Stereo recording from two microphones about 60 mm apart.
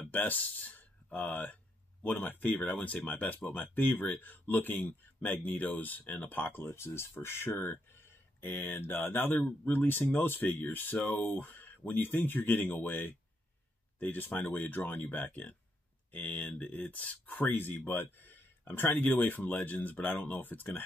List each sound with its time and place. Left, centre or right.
0.0 s speech: left
2.6 s speech: left